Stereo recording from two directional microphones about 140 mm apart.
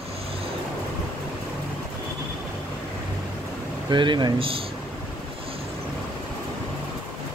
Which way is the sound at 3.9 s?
35° right (ahead or behind).